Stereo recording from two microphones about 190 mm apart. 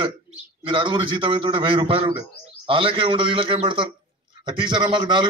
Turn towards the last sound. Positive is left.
turn(degrees=-25)  # may be behind; listen again after turning